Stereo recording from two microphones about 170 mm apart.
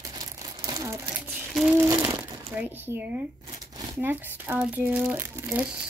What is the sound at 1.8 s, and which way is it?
Speech, 15° right (ahead or behind).